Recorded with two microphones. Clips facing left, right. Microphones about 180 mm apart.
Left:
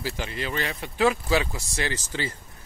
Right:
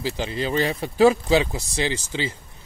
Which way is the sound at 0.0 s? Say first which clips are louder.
Right 5 dB; 30° right (ahead or behind).